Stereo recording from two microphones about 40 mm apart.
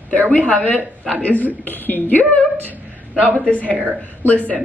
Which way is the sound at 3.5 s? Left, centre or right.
Left.